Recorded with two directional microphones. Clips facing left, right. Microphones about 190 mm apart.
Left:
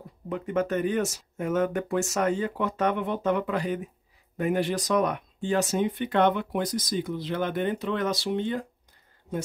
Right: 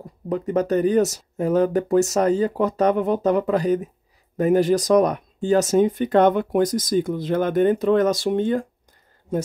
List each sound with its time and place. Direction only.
0.0 s speech: 40° right (ahead or behind)